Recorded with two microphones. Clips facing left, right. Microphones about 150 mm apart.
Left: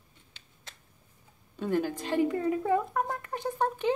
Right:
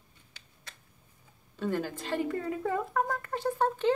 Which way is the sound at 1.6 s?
15° left (ahead or behind).